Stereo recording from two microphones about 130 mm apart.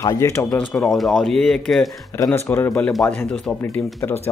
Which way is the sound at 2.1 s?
20° left (ahead or behind).